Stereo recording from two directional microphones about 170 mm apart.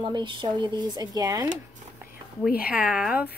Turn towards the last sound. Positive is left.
turn(degrees=-5)  # may be behind; listen again after turning